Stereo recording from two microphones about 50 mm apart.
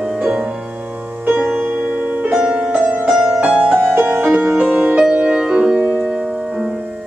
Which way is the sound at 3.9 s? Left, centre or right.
Right.